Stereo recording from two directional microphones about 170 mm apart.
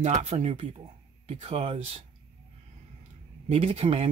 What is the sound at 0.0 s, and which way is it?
Speech, 40° right (ahead or behind).